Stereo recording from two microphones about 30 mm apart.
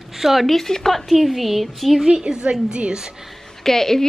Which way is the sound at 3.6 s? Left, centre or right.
Centre.